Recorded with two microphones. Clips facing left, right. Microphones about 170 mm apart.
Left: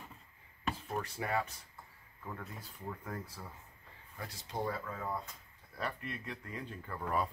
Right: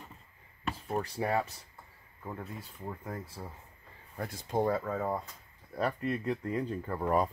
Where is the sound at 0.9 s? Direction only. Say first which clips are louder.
Right 6 dB; 35° right (ahead or behind).